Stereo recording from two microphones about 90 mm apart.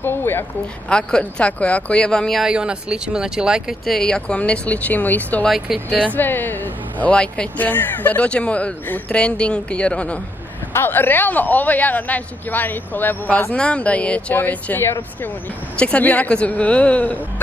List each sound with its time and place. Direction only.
0.0 s speech: 25° left (ahead or behind)
0.8 s speech: 10° left (ahead or behind)
2.4 s speech: 10° right (ahead or behind)
3.8 s speech: 5° left (ahead or behind)
10.7 s speech: 25° left (ahead or behind)